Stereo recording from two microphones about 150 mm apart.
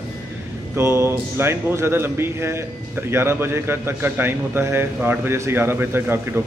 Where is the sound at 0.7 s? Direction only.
15° right (ahead or behind).